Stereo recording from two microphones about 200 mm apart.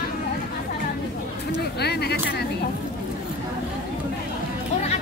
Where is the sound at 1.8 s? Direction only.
55° left (ahead or behind).